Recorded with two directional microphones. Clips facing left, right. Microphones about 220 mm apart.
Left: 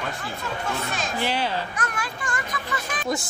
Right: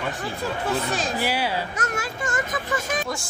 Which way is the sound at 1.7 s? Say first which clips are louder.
Right 3 dB; 25° right (ahead or behind).